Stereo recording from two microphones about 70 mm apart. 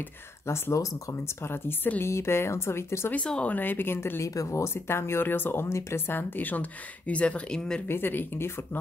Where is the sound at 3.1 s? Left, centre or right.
Centre.